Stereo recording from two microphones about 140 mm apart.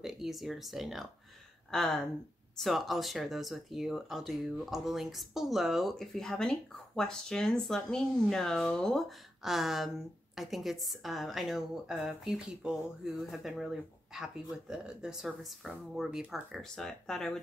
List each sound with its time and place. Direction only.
0.0 s speech: centre (ahead or behind)